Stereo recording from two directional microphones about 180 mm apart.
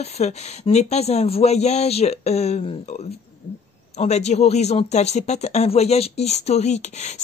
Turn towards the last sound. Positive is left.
turn(degrees=40)  # may be behind; listen again after turning